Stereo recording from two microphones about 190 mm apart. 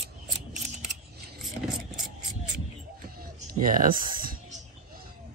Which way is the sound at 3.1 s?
45° right (ahead or behind).